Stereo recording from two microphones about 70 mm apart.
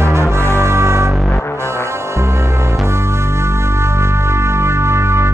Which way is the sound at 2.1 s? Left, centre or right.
Right.